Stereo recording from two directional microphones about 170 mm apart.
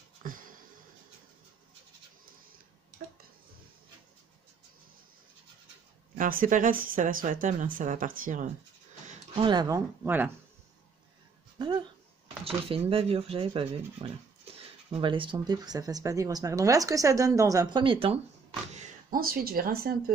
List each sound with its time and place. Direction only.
0.2 s a sound: 55° right (ahead or behind)
6.1 s speech: 55° right (ahead or behind)
9.3 s speech: 30° right (ahead or behind); by 10.3 s 10° right (ahead or behind)
11.5 s speech: 25° right (ahead or behind)
18.8 s speech: 60° right (ahead or behind)